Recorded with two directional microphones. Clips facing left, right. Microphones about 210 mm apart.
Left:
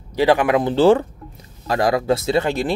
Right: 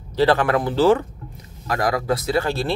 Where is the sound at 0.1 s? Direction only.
15° left (ahead or behind).